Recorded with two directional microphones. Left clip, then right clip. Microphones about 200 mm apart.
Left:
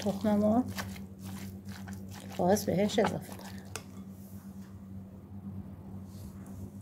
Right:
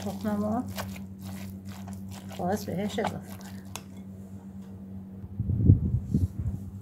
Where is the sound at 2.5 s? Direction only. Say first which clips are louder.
Left 4 dB; 35° left (ahead or behind).